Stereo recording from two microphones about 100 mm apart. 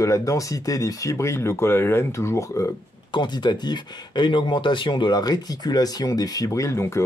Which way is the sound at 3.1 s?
50° left (ahead or behind).